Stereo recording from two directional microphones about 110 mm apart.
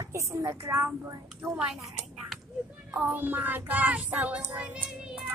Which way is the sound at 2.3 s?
Centre (ahead or behind).